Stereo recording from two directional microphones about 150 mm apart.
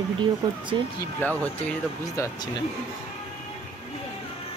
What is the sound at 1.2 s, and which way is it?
Speech, 10° left (ahead or behind).